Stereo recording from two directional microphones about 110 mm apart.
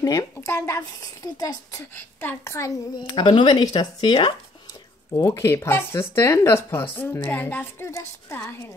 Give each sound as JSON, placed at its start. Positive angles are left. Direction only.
{"t": 0.0, "sound": "speech", "side_deg": 30}
{"t": 2.0, "sound": "speech", "side_deg": 20}
{"t": 3.2, "sound": "speech", "side_deg": 45}
{"t": 5.1, "sound": "speech", "side_deg": 25}